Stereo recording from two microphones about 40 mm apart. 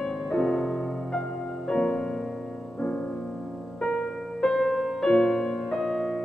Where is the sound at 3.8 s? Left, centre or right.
Centre.